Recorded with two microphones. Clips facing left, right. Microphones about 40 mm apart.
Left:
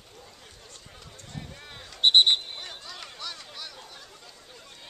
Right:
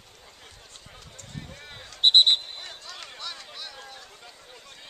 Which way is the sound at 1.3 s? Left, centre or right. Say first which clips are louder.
Even; centre.